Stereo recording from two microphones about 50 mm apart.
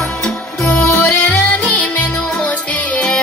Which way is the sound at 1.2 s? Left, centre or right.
Left.